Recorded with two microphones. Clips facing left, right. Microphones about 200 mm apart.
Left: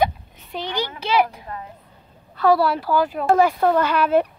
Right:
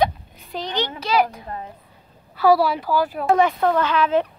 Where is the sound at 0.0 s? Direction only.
5° left (ahead or behind).